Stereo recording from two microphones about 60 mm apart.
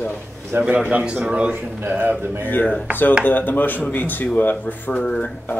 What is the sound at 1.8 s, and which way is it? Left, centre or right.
Speech, right.